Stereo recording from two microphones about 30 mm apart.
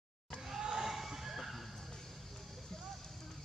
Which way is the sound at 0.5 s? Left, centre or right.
Centre.